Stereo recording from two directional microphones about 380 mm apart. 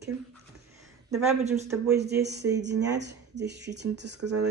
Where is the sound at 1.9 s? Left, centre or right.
Right.